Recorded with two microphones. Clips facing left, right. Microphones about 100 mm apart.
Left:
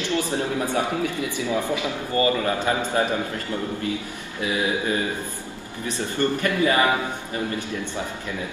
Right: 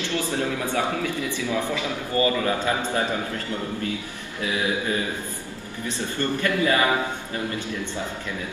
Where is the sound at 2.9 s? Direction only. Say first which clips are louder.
Left 2 dB; 25° left (ahead or behind).